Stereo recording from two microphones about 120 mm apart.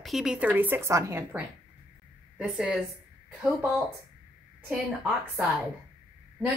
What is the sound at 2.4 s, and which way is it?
Speech, 5° right (ahead or behind).